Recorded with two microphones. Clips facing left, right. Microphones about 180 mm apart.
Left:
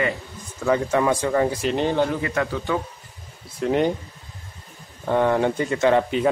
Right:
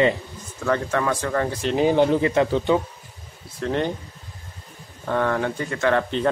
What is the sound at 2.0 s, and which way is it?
Speech, 25° right (ahead or behind).